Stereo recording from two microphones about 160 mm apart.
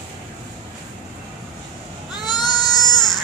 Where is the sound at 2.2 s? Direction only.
25° left (ahead or behind).